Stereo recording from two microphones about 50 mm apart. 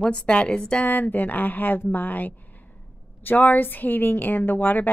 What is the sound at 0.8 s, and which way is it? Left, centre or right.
A woman's voice, left.